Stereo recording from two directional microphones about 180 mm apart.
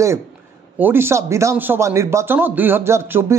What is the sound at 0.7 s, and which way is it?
Speech, 10° right (ahead or behind).